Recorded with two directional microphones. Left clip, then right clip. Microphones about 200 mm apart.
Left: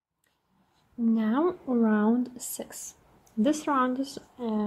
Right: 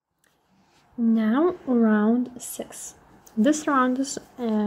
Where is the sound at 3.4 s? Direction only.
5° right (ahead or behind).